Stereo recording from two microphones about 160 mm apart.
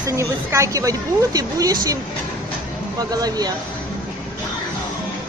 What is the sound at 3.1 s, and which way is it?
Speech, 25° right (ahead or behind).